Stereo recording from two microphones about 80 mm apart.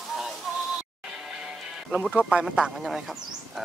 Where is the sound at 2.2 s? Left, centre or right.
Centre.